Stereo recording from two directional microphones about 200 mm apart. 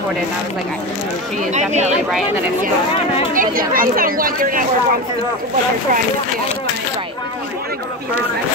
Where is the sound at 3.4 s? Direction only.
45° right (ahead or behind).